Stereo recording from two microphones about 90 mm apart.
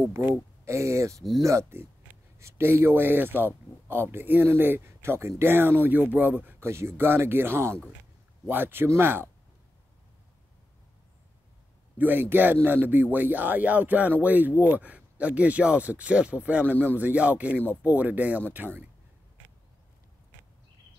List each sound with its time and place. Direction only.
0.0 s a man's voice: 25° right (ahead or behind)
12.0 s a man's voice: 20° right (ahead or behind)